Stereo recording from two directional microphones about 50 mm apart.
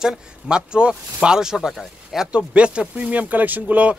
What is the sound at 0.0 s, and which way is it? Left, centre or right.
Speech, centre.